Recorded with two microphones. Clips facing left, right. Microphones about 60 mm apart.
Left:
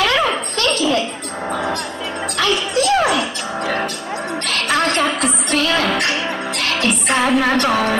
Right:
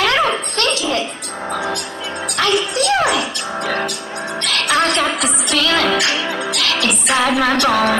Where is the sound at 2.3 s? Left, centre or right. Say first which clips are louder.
Right 1 dB; right.